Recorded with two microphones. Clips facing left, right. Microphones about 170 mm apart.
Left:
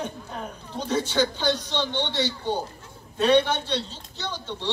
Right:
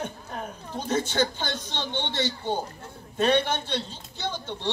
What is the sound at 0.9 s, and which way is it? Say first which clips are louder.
A man's voice: left 1 dB; 50° right (ahead or behind).